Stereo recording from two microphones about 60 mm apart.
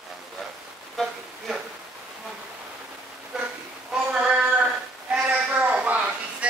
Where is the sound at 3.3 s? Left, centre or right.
Centre.